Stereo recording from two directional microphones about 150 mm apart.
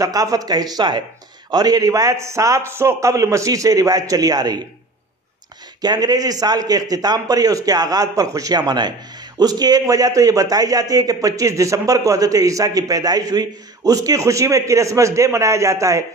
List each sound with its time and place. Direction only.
0.0 s a man's voice: 25° right (ahead or behind)
5.8 s a man's voice: 25° right (ahead or behind)